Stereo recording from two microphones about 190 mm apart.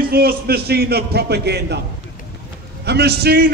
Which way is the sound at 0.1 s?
55° right (ahead or behind).